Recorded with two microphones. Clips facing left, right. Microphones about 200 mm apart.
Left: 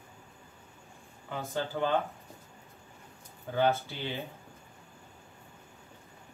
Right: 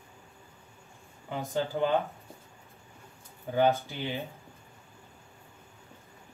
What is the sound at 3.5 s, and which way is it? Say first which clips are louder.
Speech: right 2 dB; 15° right (ahead or behind).